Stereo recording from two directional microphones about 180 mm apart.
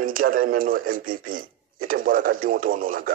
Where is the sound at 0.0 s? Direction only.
50° right (ahead or behind).